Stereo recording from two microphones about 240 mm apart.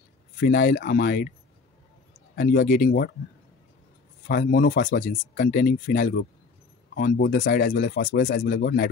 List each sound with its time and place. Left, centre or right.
0.4 s speech: left
2.3 s speech: left
4.3 s speech: left